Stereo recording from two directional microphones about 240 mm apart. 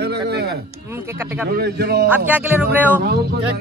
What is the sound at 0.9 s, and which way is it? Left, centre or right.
Speech, centre.